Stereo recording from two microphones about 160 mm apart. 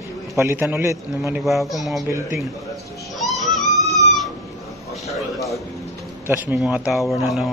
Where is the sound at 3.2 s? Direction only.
Centre (ahead or behind).